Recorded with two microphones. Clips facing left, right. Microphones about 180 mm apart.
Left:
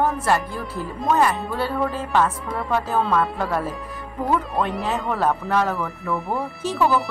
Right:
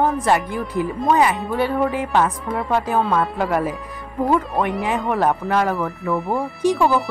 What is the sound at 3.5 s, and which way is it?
Speech, 15° right (ahead or behind).